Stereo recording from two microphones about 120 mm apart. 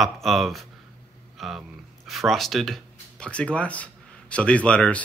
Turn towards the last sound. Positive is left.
turn(degrees=10)  # may be behind; listen again after turning